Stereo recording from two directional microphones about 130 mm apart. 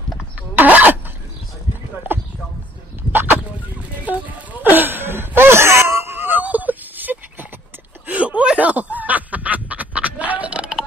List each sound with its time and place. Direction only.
0.6 s vehicle: 10° right (ahead or behind)
3.0 s a sound: 15° right (ahead or behind)
8.1 s snicker: 10° right (ahead or behind)